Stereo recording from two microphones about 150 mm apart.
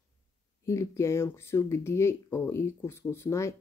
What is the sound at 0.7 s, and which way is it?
Speech, 20° left (ahead or behind).